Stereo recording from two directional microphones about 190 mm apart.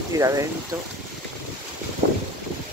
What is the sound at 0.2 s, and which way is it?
Speech, 20° right (ahead or behind).